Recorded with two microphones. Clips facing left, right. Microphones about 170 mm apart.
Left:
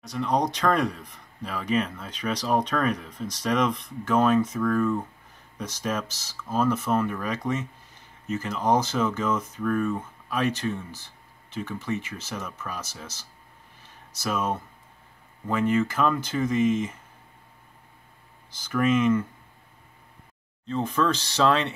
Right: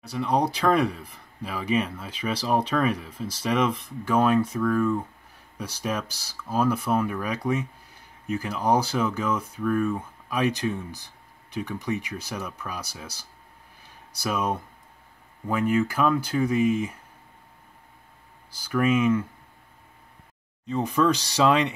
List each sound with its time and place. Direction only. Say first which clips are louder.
0.0 s speech: right 1 dB; 10° right (ahead or behind)
18.7 s speech: even; 10° right (ahead or behind)
20.6 s speech: right 2 dB; 10° right (ahead or behind)